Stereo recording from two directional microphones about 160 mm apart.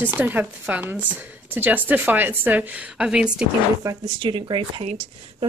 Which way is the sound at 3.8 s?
25° right (ahead or behind).